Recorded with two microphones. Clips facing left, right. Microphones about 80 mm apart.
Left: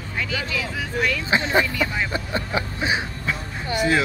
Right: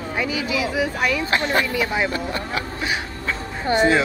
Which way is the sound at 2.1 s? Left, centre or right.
Left.